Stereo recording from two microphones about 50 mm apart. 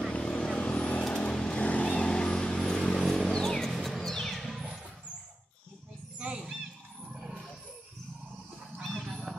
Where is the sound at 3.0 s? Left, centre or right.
Centre.